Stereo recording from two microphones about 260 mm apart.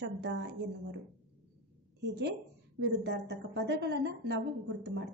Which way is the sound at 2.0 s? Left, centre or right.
Right.